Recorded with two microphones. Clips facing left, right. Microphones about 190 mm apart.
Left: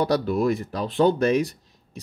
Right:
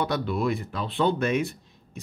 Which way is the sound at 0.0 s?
40° left (ahead or behind).